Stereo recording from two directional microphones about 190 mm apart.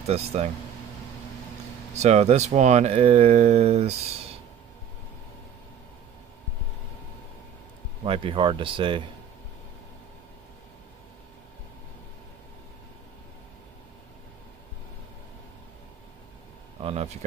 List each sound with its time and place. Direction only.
0.0 s speech: 30° right (ahead or behind)
2.0 s speech: 35° right (ahead or behind)
8.0 s speech: 25° right (ahead or behind)
16.8 s speech: 30° right (ahead or behind)